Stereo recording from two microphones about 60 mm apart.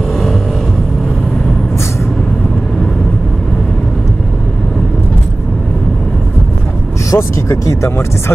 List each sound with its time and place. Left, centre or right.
7.1 s speech: left